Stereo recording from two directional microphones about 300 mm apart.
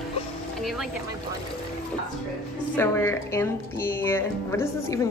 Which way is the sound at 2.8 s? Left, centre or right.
Centre.